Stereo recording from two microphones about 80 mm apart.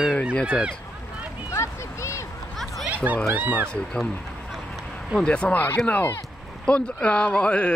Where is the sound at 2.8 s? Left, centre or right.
Right.